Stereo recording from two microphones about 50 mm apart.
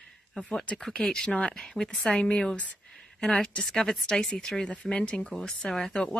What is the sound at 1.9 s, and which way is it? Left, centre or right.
A woman's voice, centre.